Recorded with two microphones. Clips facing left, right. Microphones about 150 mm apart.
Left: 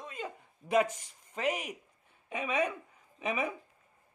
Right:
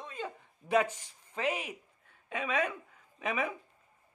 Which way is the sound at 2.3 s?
10° left (ahead or behind).